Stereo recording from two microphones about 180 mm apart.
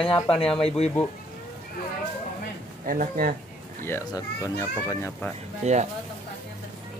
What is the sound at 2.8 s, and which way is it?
Speech, 50° right (ahead or behind).